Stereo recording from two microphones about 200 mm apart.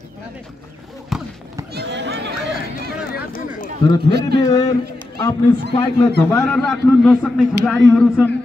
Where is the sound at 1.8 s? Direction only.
60° right (ahead or behind).